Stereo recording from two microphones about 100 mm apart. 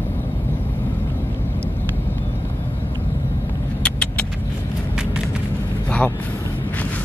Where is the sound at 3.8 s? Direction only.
10° left (ahead or behind).